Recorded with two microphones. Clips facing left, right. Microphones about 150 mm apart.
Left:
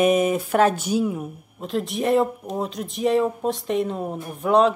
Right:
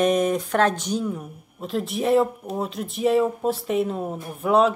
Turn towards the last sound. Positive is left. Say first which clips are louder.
# left 1 dB
turn(degrees=-5)  # may be behind; listen again after turning